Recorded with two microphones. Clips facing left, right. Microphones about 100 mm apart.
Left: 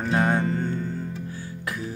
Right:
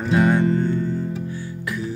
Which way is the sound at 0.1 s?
35° left (ahead or behind).